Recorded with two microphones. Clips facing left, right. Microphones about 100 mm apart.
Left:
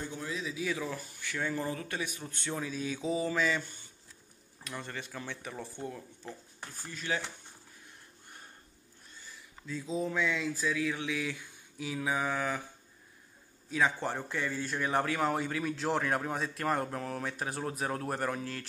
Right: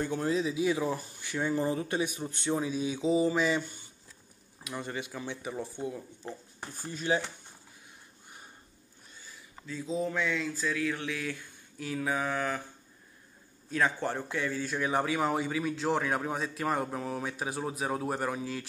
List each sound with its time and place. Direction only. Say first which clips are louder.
0.0 s speech: right 8 dB; 60° right (ahead or behind)
0.3 s speech: right 6 dB; 25° right (ahead or behind)
4.6 s speech: right 4 dB; 10° right (ahead or behind)
6.2 s speech: right 3 dB; 25° right (ahead or behind)
9.7 s a man's voice: right 1 dB; centre (ahead or behind)
13.7 s a man's voice: right 1 dB; 5° left (ahead or behind)